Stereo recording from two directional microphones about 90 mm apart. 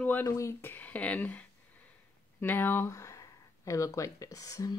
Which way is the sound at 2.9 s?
40° left (ahead or behind).